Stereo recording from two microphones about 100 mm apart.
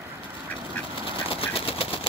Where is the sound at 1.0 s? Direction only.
70° left (ahead or behind).